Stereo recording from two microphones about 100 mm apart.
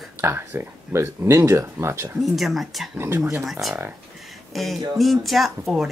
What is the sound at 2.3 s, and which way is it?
Speech, centre (ahead or behind).